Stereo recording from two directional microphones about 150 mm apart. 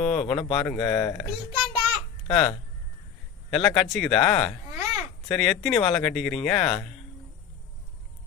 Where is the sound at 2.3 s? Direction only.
25° left (ahead or behind).